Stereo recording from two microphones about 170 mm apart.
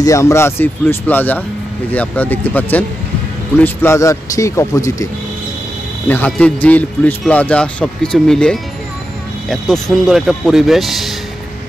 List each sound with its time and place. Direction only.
0.0 s a man's voice: 20° left (ahead or behind); by 11.1 s centre (ahead or behind)